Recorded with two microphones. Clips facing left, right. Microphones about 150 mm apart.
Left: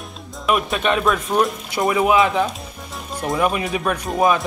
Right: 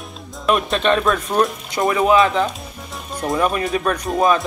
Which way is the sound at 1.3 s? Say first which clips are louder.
Right 1 dB; 10° left (ahead or behind).